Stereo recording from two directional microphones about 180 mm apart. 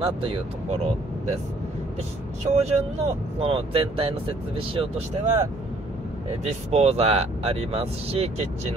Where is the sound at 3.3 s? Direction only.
30° right (ahead or behind).